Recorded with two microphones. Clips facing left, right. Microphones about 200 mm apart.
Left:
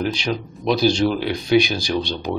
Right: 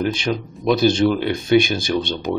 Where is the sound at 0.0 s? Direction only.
50° right (ahead or behind).